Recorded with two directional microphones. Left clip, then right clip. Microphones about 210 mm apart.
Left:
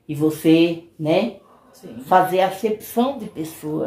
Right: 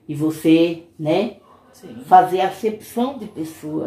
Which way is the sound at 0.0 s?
20° left (ahead or behind).